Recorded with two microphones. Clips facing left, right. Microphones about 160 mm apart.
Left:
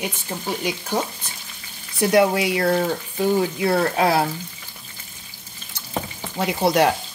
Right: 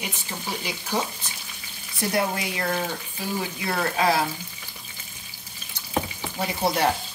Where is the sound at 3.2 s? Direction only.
65° left (ahead or behind).